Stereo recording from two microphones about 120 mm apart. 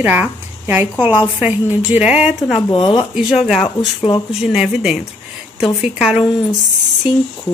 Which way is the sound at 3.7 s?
35° left (ahead or behind).